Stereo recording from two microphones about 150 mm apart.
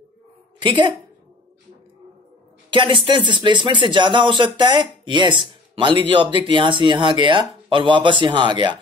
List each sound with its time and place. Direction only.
0.6 s a woman's voice: 30° right (ahead or behind)
2.7 s speech: 35° right (ahead or behind)